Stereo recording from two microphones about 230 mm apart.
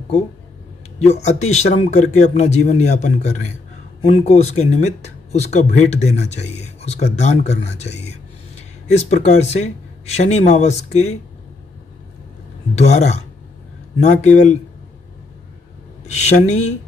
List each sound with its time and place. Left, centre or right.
0.9 s speech: left
12.7 s speech: left
16.2 s speech: left